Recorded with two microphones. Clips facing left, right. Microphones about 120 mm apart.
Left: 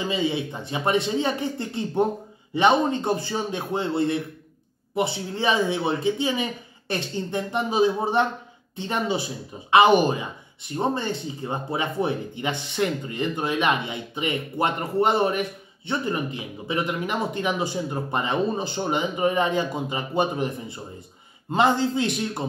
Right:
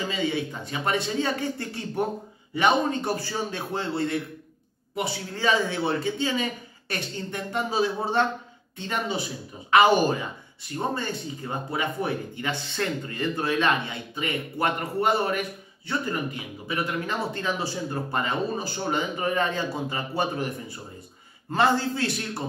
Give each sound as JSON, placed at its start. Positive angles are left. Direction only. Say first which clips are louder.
{"t": 0.1, "sound": "speech", "louder": "left 2 dB", "side_deg": 20}